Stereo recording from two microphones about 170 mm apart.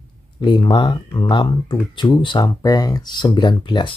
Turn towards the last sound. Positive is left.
turn(degrees=30)  # may be behind; listen again after turning